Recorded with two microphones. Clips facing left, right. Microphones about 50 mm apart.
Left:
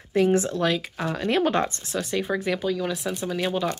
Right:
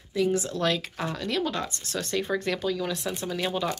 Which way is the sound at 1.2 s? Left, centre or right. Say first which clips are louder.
Left 8 dB; left.